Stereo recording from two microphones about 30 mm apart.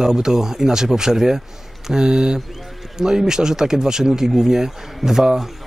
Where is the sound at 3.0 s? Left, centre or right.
Centre.